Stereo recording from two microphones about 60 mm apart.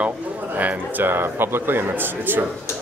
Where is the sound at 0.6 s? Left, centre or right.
Right.